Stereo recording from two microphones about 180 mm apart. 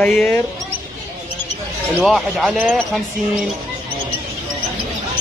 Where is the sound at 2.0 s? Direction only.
Centre (ahead or behind).